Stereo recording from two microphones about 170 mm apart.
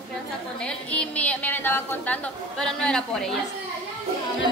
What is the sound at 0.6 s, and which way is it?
A woman's voice, 5° left (ahead or behind).